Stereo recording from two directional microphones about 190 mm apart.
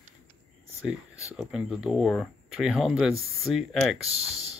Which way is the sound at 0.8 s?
5° right (ahead or behind).